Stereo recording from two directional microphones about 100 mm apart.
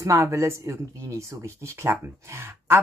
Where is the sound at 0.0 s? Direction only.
30° right (ahead or behind).